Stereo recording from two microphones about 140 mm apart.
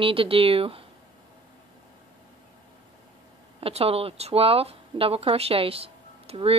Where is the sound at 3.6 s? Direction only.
45° right (ahead or behind).